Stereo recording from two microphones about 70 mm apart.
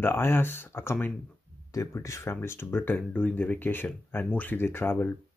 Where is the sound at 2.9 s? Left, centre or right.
Centre.